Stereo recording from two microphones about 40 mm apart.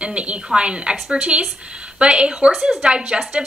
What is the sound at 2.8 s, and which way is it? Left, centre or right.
Speech, right.